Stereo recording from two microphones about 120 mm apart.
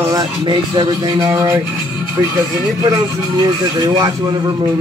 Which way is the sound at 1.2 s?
25° right (ahead or behind).